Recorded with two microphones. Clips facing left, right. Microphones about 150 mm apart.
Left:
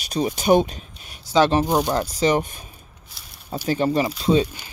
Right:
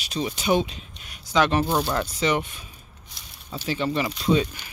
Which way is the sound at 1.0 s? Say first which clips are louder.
Left 4 dB; 30° left (ahead or behind).